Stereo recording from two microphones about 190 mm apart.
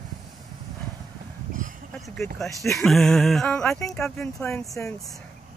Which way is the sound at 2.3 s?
Centre (ahead or behind).